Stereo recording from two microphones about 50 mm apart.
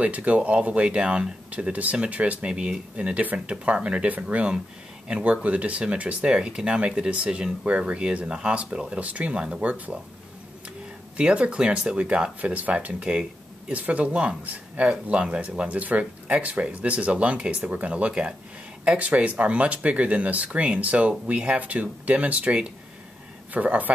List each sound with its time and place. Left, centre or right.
0.0 s speech: right
11.1 s speech: right